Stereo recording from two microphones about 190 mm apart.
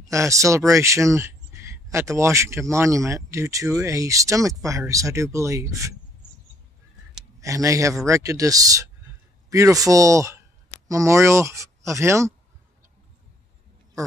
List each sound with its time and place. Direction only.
0.1 s speech: 15° right (ahead or behind)
7.3 s speech: 15° right (ahead or behind)